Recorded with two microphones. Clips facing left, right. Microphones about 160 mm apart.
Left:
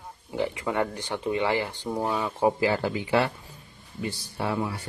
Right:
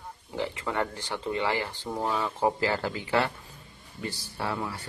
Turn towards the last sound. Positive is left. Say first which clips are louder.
# left 4 dB
turn(degrees=15)  # may be behind; listen again after turning